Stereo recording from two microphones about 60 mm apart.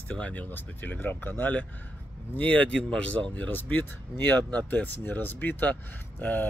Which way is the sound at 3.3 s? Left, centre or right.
Left.